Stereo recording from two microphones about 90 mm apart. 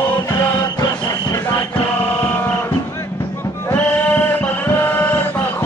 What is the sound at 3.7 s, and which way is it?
Music, 15° left (ahead or behind).